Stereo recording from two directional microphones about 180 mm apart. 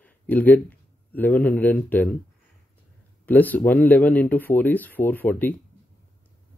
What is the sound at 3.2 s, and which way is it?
Speech, 10° left (ahead or behind).